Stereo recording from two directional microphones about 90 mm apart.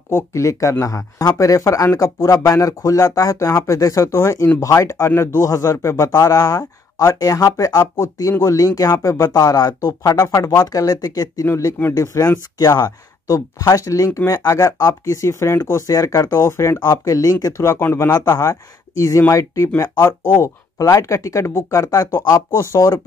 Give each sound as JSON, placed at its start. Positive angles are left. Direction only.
{"t": 0.1, "sound": "speech", "side_deg": 35}
{"t": 11.4, "sound": "speech", "side_deg": 30}
{"t": 16.8, "sound": "speech", "side_deg": 45}